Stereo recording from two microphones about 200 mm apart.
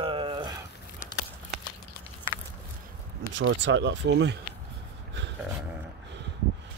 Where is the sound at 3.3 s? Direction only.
65° right (ahead or behind).